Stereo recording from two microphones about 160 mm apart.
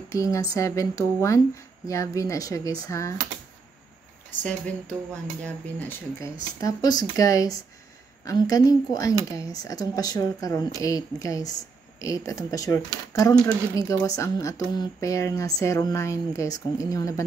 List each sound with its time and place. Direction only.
0.1 s speech: 20° left (ahead or behind)
5.4 s speech: 10° left (ahead or behind)